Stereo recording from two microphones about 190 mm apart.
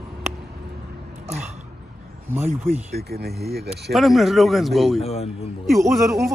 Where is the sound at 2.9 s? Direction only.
55° right (ahead or behind).